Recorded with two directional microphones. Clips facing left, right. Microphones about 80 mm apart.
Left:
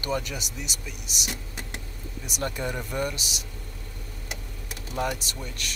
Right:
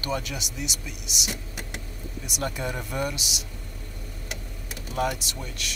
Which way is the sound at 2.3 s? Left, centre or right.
Centre.